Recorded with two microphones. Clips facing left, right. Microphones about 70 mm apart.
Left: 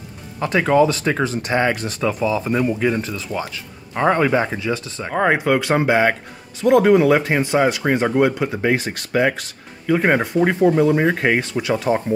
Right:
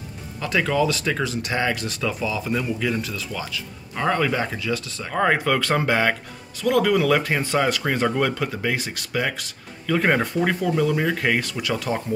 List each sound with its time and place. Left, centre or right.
0.4 s speech: left
8.6 s speech: left
9.8 s speech: centre